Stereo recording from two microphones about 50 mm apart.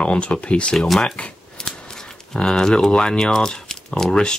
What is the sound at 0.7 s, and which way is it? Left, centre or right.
Speech, centre.